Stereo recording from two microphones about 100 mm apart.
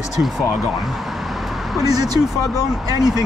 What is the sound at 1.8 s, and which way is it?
Speech, 40° right (ahead or behind).